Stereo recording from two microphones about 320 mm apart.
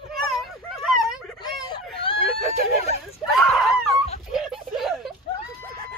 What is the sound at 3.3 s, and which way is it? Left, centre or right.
Screaming, centre.